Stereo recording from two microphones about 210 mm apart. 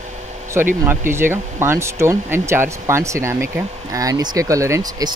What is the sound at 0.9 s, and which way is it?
Speech, 10° right (ahead or behind).